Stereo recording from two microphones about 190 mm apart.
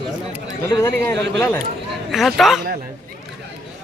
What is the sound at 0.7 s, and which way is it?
Speech, 15° left (ahead or behind).